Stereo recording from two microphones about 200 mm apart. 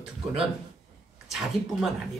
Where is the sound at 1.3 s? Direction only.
Centre (ahead or behind).